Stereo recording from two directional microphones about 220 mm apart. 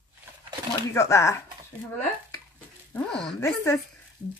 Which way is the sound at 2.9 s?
5° left (ahead or behind).